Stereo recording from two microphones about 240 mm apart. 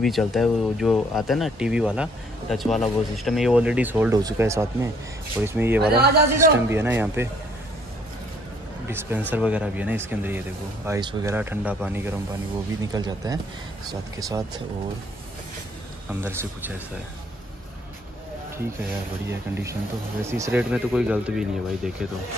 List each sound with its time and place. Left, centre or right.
0.0 s speech: centre
5.9 s a man's voice: right
6.3 s speech: centre
8.8 s speech: centre
16.1 s speech: centre
19.2 s speech: centre